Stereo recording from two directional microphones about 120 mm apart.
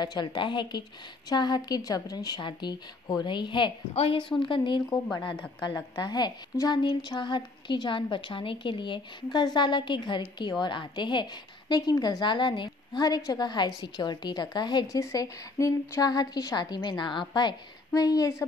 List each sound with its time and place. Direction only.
0.0 s a woman's voice: 35° left (ahead or behind)
3.9 s a woman's voice: 55° left (ahead or behind); by 6.8 s 25° left (ahead or behind)
6.8 s a woman's voice: 35° left (ahead or behind)